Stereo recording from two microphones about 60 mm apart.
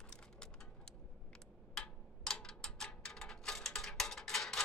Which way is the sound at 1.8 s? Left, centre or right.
Centre.